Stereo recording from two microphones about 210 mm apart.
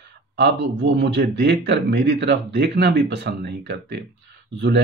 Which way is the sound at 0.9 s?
55° right (ahead or behind).